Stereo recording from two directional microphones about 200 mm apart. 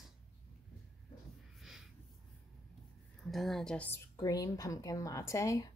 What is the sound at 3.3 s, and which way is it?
A woman's voice, centre (ahead or behind).